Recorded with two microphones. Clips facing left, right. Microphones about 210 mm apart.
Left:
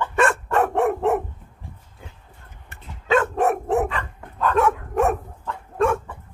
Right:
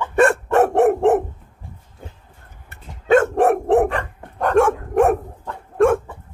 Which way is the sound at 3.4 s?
55° right (ahead or behind).